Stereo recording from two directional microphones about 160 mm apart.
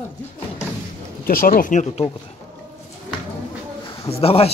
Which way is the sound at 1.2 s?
65° left (ahead or behind).